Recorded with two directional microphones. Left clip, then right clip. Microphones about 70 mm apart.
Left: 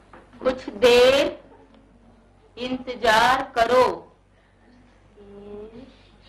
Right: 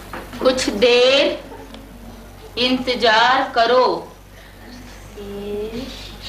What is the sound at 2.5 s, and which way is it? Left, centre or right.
A woman's voice, right.